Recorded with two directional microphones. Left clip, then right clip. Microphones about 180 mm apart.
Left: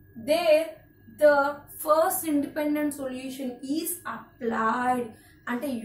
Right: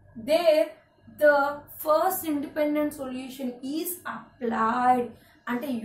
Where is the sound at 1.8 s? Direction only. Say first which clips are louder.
Left 1 dB; 10° left (ahead or behind).